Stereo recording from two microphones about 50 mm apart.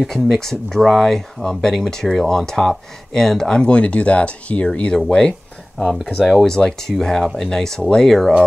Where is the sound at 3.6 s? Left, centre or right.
Left.